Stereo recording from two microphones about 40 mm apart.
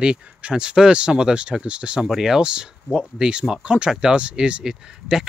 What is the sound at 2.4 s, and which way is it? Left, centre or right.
Speech, right.